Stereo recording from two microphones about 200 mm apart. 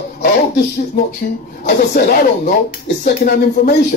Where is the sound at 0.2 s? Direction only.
45° left (ahead or behind).